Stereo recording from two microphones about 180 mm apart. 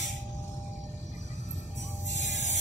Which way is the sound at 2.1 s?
40° left (ahead or behind).